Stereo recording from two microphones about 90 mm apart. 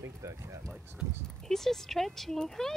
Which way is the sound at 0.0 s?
35° right (ahead or behind).